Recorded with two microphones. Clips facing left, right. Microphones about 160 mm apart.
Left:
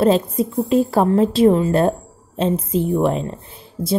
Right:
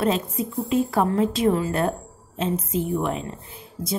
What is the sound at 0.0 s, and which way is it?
A woman's voice, 35° left (ahead or behind).